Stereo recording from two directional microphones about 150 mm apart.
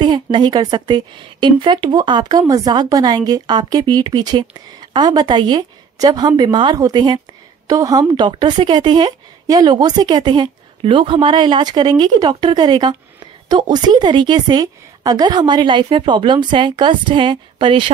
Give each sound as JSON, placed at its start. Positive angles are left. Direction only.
{"t": 0.0, "sound": "a woman's voice", "side_deg": -30}